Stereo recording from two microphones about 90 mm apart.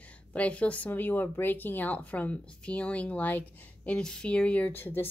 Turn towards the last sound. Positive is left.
turn(degrees=20)  # may be behind; listen again after turning